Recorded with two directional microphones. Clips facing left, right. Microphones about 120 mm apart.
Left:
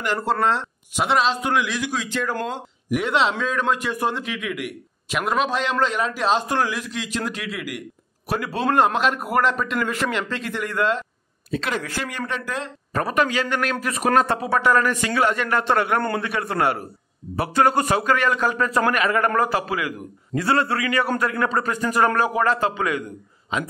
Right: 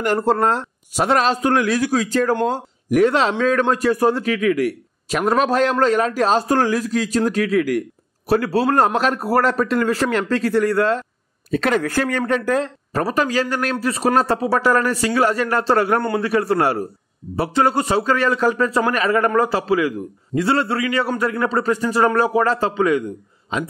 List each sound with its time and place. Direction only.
0.0 s a man's voice: 45° right (ahead or behind)
8.3 s speech: 35° right (ahead or behind)
11.5 s speech: 50° right (ahead or behind)
17.4 s a man's voice: 25° right (ahead or behind)